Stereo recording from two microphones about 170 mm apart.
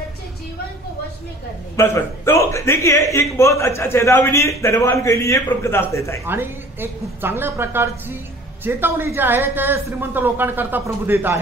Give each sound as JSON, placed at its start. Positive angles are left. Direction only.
{"t": 1.8, "sound": "a man's voice", "side_deg": 15}
{"t": 6.2, "sound": "a man's voice", "side_deg": -15}